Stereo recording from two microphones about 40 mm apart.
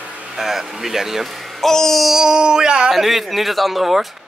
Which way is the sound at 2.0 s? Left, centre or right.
Centre.